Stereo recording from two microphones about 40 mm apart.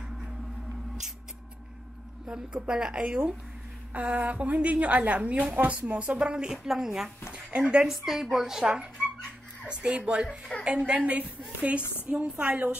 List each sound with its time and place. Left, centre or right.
2.2 s a woman's voice: right
7.3 s a sound: right
7.9 s a woman's voice: centre
11.1 s a woman's voice: right